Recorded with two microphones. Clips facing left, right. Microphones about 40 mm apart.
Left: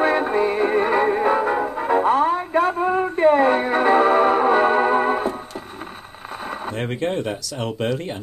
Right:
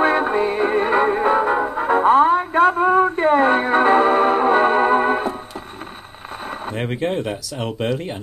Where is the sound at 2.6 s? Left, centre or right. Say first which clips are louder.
Right 5 dB; right.